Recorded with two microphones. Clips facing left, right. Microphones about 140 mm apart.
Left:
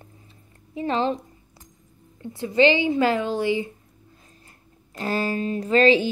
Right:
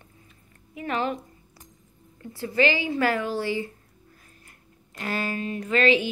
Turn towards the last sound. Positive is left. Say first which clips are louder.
# left 4 dB
turn(degrees=35)  # may be behind; listen again after turning